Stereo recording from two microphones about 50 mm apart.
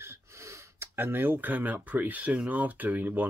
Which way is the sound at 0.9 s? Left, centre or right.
Right.